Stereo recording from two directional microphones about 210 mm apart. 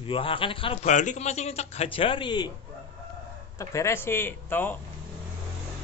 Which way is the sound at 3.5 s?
15° left (ahead or behind).